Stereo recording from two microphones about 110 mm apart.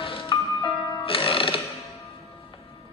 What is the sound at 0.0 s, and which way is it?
Music, 50° left (ahead or behind).